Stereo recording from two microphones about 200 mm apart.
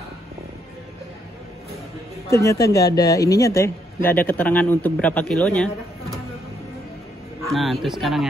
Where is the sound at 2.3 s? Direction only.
15° left (ahead or behind).